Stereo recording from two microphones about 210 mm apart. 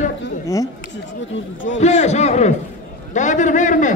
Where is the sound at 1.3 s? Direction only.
65° left (ahead or behind).